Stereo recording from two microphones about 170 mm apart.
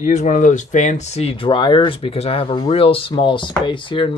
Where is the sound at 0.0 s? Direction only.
45° left (ahead or behind).